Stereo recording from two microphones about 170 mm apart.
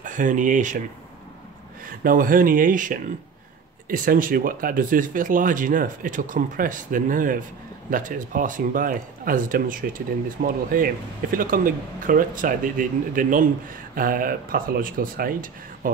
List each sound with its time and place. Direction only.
0.0 s speech: 50° right (ahead or behind)
1.9 s speech: 55° right (ahead or behind)